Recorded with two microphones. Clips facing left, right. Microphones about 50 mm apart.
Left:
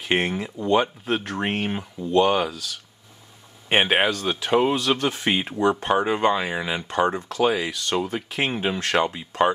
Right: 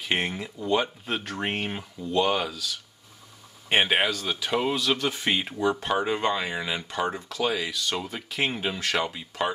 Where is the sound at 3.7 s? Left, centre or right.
Centre.